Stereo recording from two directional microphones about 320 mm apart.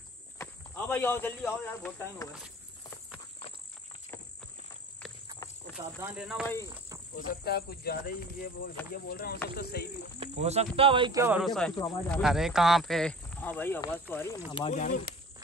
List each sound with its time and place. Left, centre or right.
0.4 s speech: centre
2.3 s a sound: centre
5.9 s speech: centre
7.2 s speech: left
10.1 s speech: centre
14.5 s speech: centre